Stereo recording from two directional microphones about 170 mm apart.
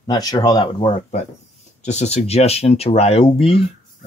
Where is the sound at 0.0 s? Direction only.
20° left (ahead or behind).